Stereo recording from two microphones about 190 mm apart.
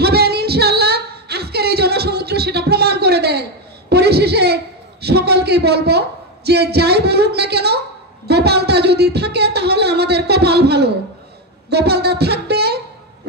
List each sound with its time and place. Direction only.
0.0 s female singing: 55° right (ahead or behind)
3.9 s a sound: 60° right (ahead or behind)
5.0 s a woman's voice: 60° right (ahead or behind)